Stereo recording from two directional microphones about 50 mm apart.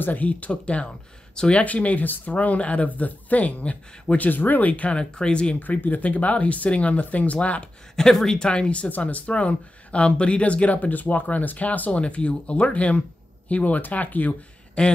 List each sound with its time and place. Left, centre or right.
0.0 s speech: left
5.6 s speech: left
7.9 s speech: centre; by 14.3 s left
14.8 s speech: left